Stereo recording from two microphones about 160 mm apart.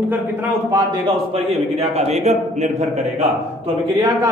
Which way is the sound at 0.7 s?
30° right (ahead or behind).